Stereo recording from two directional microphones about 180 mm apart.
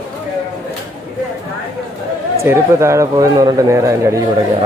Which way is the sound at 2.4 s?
15° right (ahead or behind).